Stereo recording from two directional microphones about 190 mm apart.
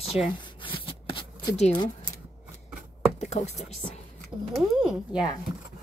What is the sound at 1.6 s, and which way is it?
Speech, 25° left (ahead or behind).